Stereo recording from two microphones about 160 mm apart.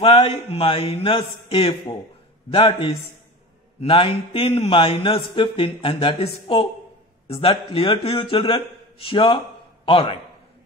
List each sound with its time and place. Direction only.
0.0 s a man's voice: 40° left (ahead or behind)